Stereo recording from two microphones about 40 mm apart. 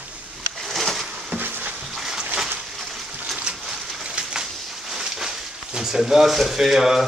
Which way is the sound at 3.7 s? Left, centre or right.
Centre.